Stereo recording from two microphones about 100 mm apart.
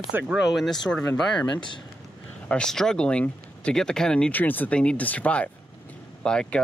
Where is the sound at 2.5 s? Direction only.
5° left (ahead or behind).